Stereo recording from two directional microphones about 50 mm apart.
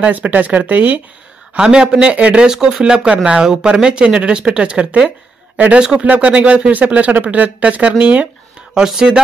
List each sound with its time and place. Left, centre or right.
0.0 s speech: right
1.6 s speech: centre
2.4 s speech: centre; by 8.3 s right
8.8 s speech: centre